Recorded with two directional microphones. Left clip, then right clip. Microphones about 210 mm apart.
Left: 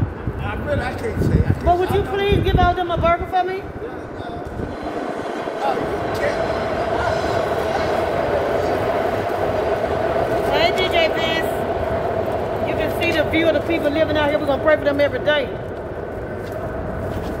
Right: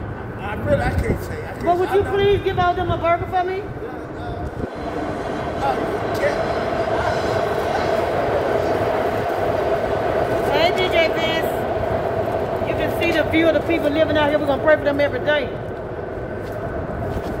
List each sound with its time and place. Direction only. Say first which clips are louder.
0.7 s speech: right 4 dB; 25° right (ahead or behind)
1.7 s speech: even; 25° left (ahead or behind)
10.5 s a sound: even; 5° left (ahead or behind)
12.6 s speech: left 1 dB; centre (ahead or behind); by 15.4 s 30° left (ahead or behind)